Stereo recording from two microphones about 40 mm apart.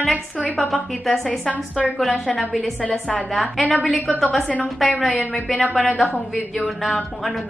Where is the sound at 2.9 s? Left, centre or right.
Left.